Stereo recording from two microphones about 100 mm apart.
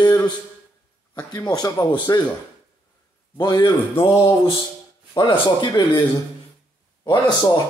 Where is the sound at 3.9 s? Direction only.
65° left (ahead or behind).